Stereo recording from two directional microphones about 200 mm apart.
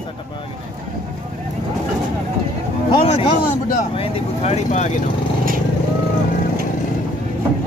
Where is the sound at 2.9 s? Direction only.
30° left (ahead or behind).